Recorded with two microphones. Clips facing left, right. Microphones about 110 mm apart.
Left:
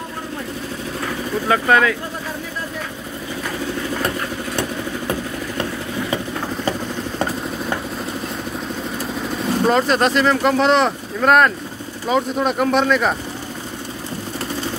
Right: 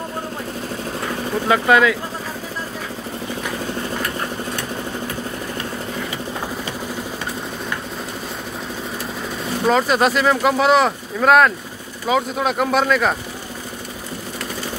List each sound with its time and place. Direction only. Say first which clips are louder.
1.5 s speech: right 1 dB; 15° right (ahead or behind)
9.7 s speech: right 1 dB; 5° right (ahead or behind)